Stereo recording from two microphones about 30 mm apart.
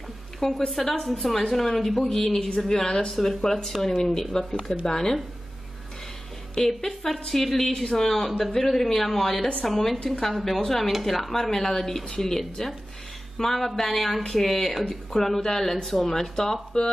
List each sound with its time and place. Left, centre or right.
0.4 s speech: centre
2.7 s speech: centre
6.6 s a woman's voice: centre